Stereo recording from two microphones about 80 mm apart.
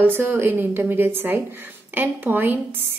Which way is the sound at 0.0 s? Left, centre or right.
Right.